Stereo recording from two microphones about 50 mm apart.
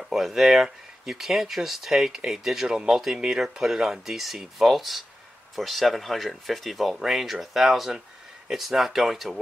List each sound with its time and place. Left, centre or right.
0.0 s speech: centre